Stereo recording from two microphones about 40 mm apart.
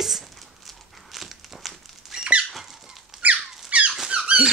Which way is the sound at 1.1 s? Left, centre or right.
Centre.